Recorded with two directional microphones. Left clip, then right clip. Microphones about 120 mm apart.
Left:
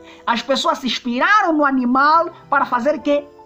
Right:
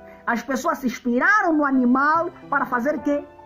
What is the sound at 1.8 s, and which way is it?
Speech, 10° left (ahead or behind).